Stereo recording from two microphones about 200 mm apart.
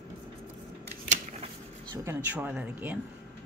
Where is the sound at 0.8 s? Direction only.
35° right (ahead or behind).